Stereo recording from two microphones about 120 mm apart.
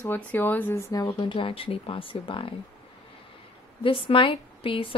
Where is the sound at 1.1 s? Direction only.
45° left (ahead or behind).